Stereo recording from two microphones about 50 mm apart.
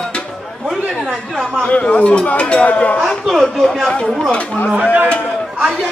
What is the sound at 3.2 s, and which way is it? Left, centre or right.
Speech, centre.